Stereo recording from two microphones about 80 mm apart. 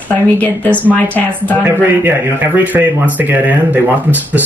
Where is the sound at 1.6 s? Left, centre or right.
Right.